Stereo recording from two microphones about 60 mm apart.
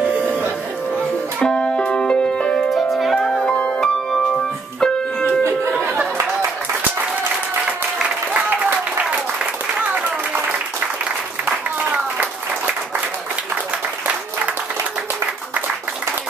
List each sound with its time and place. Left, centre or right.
1.4 s music: centre
2.7 s music: centre
3.2 s music: centre
11.9 s applause: right